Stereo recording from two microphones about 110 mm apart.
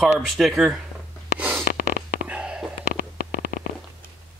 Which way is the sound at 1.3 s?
15° right (ahead or behind).